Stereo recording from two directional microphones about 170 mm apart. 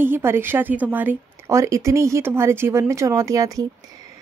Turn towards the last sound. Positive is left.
turn(degrees=-20)  # may be behind; listen again after turning